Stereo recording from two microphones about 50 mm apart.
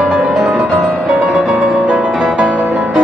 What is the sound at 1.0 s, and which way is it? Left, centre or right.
Music, centre.